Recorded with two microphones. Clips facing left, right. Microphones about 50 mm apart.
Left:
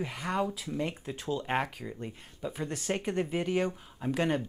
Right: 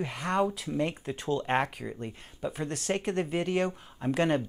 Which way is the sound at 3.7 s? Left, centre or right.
Centre.